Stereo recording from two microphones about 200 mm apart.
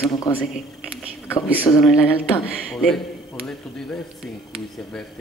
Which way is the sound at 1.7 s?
15° left (ahead or behind).